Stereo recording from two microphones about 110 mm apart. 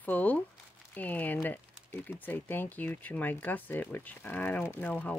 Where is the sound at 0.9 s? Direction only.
15° left (ahead or behind).